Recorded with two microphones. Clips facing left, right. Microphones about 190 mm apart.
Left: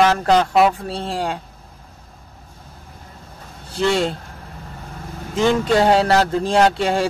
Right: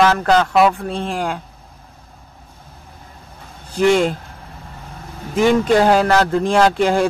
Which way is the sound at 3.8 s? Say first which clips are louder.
Right 4 dB; 15° right (ahead or behind).